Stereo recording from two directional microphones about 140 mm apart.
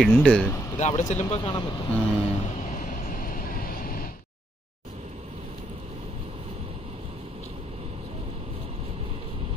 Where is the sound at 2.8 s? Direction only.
80° left.